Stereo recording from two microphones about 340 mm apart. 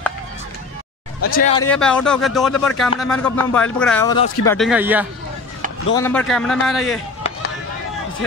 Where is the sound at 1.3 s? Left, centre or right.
Centre.